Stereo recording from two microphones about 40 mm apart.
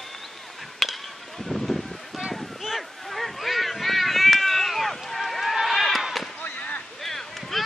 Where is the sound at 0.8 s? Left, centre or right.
Centre.